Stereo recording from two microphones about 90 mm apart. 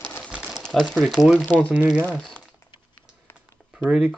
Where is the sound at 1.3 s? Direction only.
10° right (ahead or behind).